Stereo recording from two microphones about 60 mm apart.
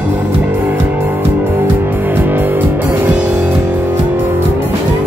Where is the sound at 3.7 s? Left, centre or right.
Right.